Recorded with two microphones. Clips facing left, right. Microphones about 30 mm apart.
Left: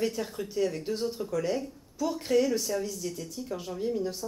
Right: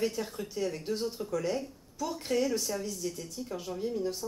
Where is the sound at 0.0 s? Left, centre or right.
Centre.